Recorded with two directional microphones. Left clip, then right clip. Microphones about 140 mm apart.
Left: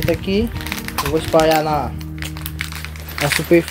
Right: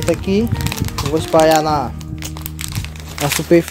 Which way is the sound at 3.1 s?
20° right (ahead or behind).